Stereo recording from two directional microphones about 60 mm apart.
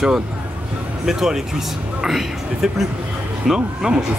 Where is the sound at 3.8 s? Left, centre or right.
Centre.